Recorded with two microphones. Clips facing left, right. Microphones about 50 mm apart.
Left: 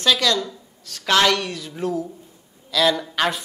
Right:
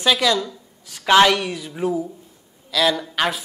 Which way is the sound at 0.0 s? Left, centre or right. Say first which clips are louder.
Right 1 dB; centre.